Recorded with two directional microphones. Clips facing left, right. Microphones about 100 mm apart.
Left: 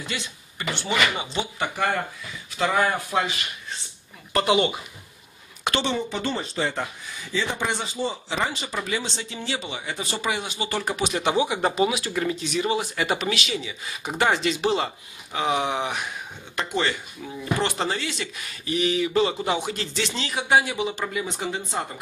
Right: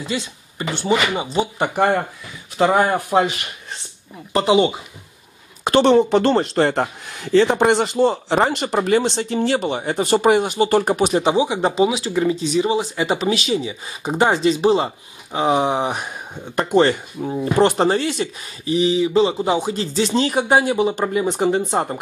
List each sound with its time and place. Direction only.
0.0 s speech: 25° right (ahead or behind)
4.3 s speech: 25° right (ahead or behind)
5.8 s speech: 65° right (ahead or behind); by 11.1 s 45° right (ahead or behind)
11.1 s speech: 30° right (ahead or behind)
12.1 s speech: 20° right (ahead or behind); by 22.0 s 45° right (ahead or behind)